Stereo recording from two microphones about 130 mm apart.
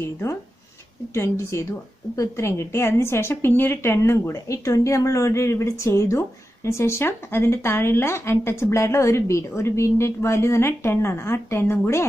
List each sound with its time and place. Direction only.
0.0 s a woman's voice: 20° left (ahead or behind)